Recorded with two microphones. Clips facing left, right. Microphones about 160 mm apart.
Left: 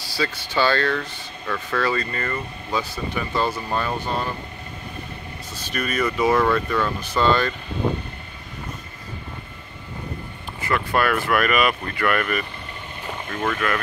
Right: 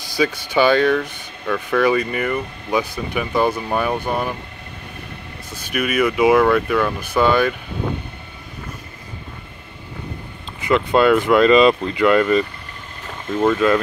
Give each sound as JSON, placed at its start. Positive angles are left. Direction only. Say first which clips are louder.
{"t": 0.0, "sound": "speech", "louder": "right 6 dB", "side_deg": -15}
{"t": 5.5, "sound": "speech", "louder": "right 5 dB", "side_deg": -10}
{"t": 10.6, "sound": "speech", "louder": "right 7 dB", "side_deg": -20}
{"t": 13.3, "sound": "speech", "louder": "right 9 dB", "side_deg": -10}